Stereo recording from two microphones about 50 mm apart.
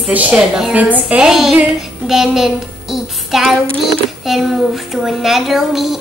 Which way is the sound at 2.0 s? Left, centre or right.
Centre.